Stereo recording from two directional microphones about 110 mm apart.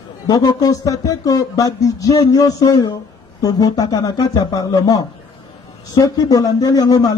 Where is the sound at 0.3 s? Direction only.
35° left (ahead or behind).